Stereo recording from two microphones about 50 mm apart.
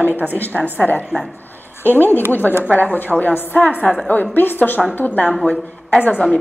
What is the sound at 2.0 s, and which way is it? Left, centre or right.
A woman's voice, left.